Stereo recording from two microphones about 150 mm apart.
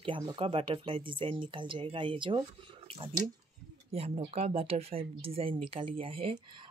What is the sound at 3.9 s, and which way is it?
Speech, 40° right (ahead or behind).